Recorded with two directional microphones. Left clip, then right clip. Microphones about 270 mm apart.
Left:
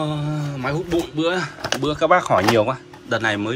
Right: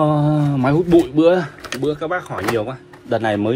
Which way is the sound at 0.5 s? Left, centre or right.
Centre.